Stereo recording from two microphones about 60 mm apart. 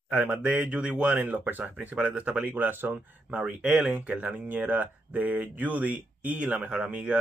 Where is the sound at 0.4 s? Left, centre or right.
Right.